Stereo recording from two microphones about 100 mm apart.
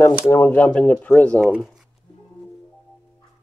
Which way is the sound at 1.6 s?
Centre (ahead or behind).